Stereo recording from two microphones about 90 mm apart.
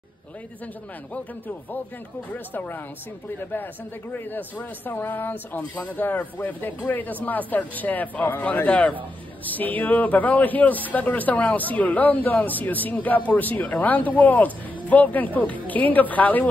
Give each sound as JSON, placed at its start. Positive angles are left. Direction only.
{"t": 2.3, "sound": "speech", "side_deg": 20}
{"t": 4.1, "sound": "a man's voice", "side_deg": 20}